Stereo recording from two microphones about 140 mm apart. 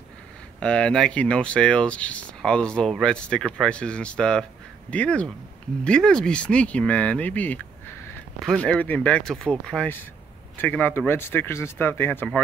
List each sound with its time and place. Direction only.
0.6 s speech: 5° left (ahead or behind)